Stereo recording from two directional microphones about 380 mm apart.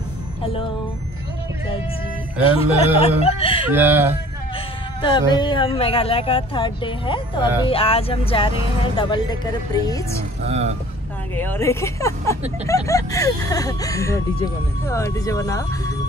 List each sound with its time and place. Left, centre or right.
2.4 s speech: centre
3.7 s speech: centre
5.0 s speech: centre
10.4 s speech: centre
11.3 s speech: centre